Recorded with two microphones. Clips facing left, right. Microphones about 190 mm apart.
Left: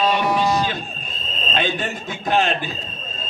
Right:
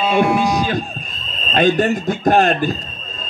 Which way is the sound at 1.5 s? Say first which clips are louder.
Right 10 dB; 45° right (ahead or behind).